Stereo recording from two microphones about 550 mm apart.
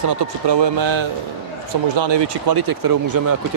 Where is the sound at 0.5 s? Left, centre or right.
Right.